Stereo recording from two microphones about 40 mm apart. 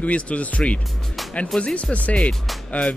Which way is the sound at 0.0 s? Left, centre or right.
Left.